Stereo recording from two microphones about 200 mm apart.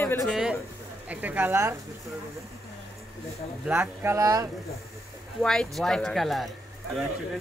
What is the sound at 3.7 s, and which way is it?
Speech, 10° right (ahead or behind).